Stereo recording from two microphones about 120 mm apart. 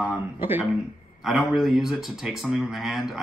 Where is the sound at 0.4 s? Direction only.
15° right (ahead or behind).